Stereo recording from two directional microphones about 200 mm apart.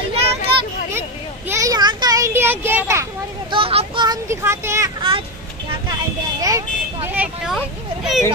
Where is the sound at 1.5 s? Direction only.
15° right (ahead or behind).